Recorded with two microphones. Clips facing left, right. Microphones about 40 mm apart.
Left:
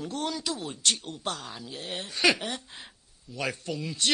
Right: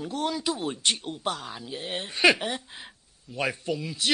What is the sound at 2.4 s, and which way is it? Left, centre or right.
Speech, centre.